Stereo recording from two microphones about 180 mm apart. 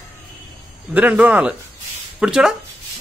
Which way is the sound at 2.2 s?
5° right (ahead or behind).